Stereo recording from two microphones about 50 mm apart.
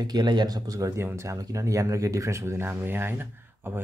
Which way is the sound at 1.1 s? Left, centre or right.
Right.